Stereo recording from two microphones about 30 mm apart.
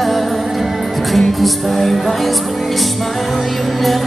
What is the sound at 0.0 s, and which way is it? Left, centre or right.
Music, centre.